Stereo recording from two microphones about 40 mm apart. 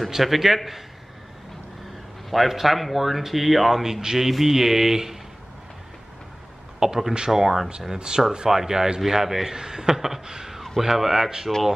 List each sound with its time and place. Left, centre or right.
0.1 s speech: centre
2.3 s speech: centre
3.8 s speech: centre
6.8 s speech: centre